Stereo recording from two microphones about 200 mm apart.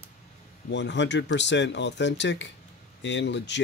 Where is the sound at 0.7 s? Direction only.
60° left (ahead or behind).